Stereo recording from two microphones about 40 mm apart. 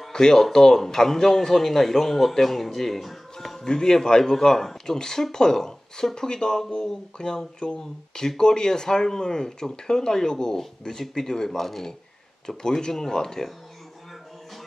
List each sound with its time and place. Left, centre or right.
0.1 s speech: centre
3.6 s speech: centre